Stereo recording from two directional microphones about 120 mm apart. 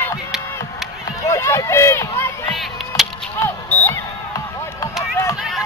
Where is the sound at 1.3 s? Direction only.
25° left (ahead or behind).